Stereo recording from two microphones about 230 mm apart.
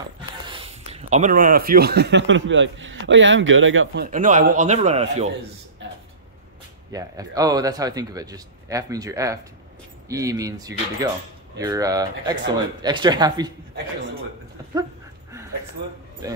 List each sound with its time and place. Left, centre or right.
0.5 s speech: right
4.0 s a man's voice: right
6.9 s a man's voice: centre